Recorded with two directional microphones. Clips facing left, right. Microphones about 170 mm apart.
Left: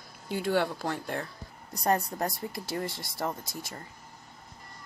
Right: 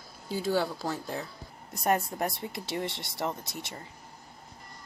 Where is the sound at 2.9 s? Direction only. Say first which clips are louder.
Even; 25° right (ahead or behind).